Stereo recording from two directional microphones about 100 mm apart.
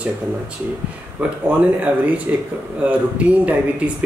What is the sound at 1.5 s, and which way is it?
Speech, 15° right (ahead or behind).